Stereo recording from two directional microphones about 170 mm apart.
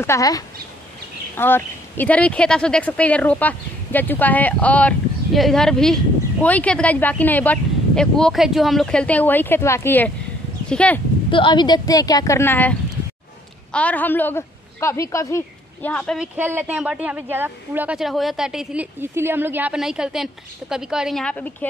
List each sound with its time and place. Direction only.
0.0 s speech: 20° left (ahead or behind)
11.2 s speech: 30° left (ahead or behind); by 12.7 s 10° left (ahead or behind)
13.7 s a woman's voice: 10° left (ahead or behind)
16.2 s a woman's voice: 10° right (ahead or behind); by 21.6 s 10° left (ahead or behind)